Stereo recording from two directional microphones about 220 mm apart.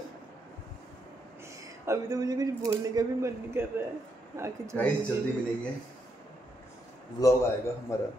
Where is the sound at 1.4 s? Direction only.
15° right (ahead or behind).